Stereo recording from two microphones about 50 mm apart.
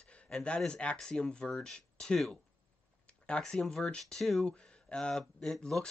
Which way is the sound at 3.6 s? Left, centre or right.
Centre.